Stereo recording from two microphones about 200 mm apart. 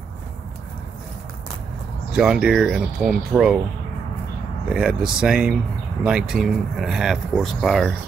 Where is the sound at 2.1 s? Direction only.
5° right (ahead or behind).